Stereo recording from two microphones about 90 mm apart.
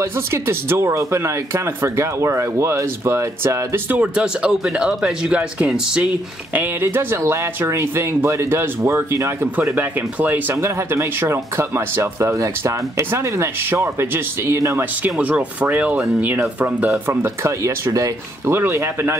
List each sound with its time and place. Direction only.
0.0 s speech: 30° right (ahead or behind)
4.0 s speech: 10° right (ahead or behind)
6.5 s speech: 20° right (ahead or behind)
9.8 s speech: 20° right (ahead or behind)
15.0 s speech: 10° right (ahead or behind)
17.1 s speech: 30° right (ahead or behind)